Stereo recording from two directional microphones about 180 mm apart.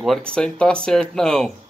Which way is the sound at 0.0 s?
5° left (ahead or behind).